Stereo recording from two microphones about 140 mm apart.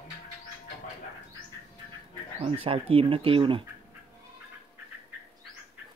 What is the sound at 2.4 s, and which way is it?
Speech, 45° right (ahead or behind).